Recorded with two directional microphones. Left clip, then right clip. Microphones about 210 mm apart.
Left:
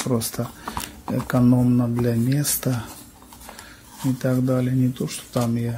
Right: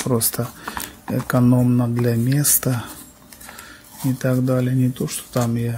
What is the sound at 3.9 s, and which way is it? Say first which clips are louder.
Speech: right 2 dB; 15° right (ahead or behind).